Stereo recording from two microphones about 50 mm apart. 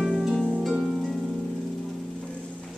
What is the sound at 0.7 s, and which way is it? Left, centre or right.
Harp, centre.